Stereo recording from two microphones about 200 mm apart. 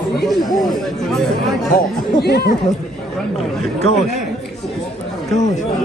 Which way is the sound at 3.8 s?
30° left (ahead or behind).